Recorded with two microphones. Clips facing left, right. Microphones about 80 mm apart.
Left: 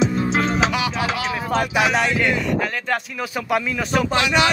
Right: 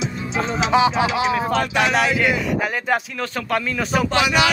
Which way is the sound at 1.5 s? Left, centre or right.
Centre.